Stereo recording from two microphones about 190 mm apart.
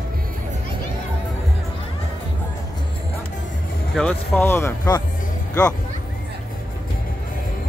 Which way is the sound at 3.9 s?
5° left (ahead or behind).